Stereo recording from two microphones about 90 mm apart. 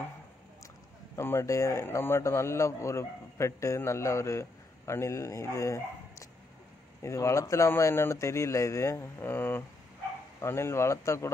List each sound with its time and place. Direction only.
1.1 s a man's voice: 30° left (ahead or behind)